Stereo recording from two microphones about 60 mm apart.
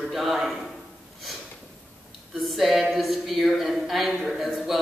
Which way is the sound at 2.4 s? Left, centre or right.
Centre.